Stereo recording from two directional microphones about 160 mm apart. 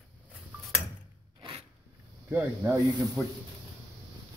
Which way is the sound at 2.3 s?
10° right (ahead or behind).